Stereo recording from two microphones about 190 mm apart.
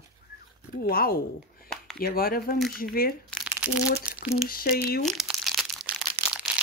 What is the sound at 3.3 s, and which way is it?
Crumpling, 5° right (ahead or behind).